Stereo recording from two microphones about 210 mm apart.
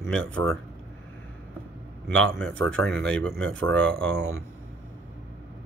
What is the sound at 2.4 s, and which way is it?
Speech, 65° right (ahead or behind).